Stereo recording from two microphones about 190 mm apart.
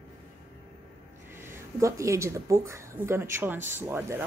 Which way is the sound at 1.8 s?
15° right (ahead or behind).